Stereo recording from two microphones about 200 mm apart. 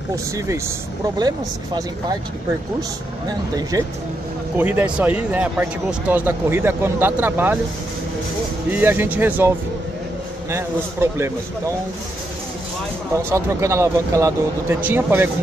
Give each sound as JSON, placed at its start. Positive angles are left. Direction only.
{"t": 3.3, "sound": "speech", "side_deg": -20}
{"t": 4.6, "sound": "speech", "side_deg": -10}
{"t": 8.6, "sound": "speech", "side_deg": -10}
{"t": 10.5, "sound": "speech", "side_deg": -15}
{"t": 13.1, "sound": "speech", "side_deg": -15}